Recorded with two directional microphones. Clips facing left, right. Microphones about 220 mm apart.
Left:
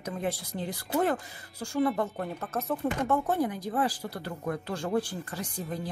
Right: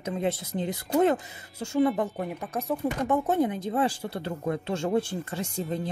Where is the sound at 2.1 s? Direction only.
10° right (ahead or behind).